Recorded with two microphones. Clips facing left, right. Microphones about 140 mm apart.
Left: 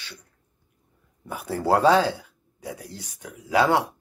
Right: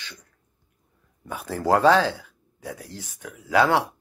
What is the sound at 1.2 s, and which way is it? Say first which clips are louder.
Speech: even; 10° left (ahead or behind).